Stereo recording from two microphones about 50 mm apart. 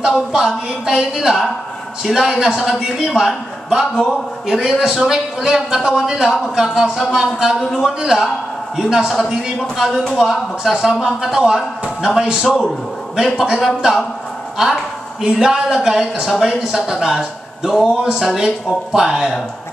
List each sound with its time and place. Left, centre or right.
0.1 s a man's voice: centre
15.3 s a man's voice: centre
16.6 s a man's voice: centre